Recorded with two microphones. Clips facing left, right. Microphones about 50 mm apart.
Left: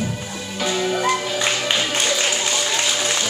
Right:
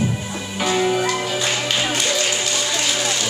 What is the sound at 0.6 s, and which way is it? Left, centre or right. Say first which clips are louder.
Music: right 3 dB; centre.